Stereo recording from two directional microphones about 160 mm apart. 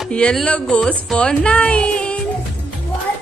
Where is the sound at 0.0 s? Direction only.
5° left (ahead or behind).